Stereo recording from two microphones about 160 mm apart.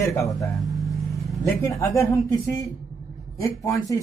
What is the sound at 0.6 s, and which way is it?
Vehicle, centre (ahead or behind).